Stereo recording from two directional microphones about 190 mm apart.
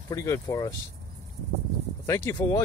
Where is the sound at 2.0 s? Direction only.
15° left (ahead or behind).